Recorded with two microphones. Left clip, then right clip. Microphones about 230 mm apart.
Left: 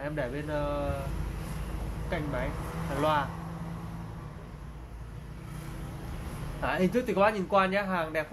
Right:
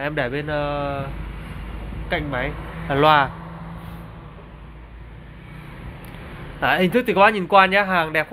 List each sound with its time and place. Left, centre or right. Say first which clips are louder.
0.0 s speech: right 10 dB; right
2.0 s speech: right 9 dB; right
6.6 s speech: right 10 dB; right